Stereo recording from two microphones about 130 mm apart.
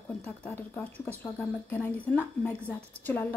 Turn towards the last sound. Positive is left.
turn(degrees=10)  # may be behind; listen again after turning